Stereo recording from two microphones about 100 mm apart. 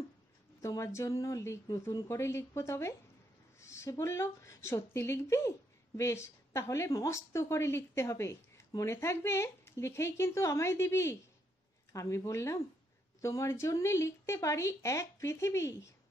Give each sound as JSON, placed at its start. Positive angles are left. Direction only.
{"t": 0.6, "sound": "a woman's voice", "side_deg": 30}